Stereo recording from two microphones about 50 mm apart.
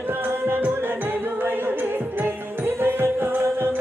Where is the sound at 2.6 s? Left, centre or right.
Right.